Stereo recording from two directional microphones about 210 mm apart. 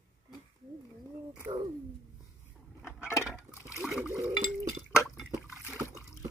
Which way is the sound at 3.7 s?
Centre (ahead or behind).